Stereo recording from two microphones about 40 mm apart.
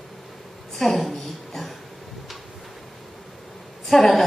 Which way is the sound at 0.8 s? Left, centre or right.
Centre.